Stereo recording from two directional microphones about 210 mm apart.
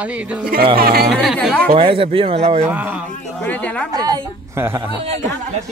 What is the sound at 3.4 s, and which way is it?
Speech, 5° left (ahead or behind).